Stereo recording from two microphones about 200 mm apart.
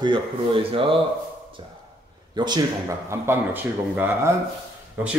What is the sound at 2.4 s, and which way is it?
A man's voice, 20° right (ahead or behind).